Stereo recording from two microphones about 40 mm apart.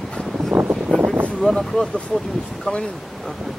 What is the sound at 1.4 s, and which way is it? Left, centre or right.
Speech, centre.